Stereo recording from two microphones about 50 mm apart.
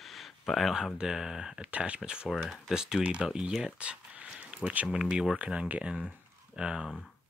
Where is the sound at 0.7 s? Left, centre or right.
Centre.